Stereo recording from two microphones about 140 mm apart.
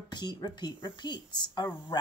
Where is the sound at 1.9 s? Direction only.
30° left (ahead or behind).